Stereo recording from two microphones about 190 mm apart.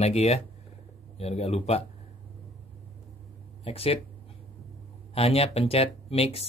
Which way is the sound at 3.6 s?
30° left (ahead or behind).